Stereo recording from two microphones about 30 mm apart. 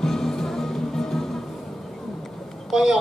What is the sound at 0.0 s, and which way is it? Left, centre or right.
Music, centre.